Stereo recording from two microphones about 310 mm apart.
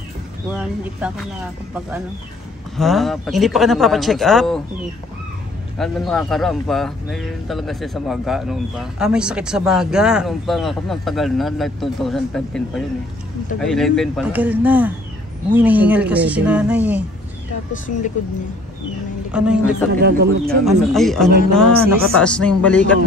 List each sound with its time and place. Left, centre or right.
0.5 s speech: centre
2.8 s speech: centre
5.8 s speech: centre
19.3 s speech: centre
20.0 s speech: right
20.4 s speech: centre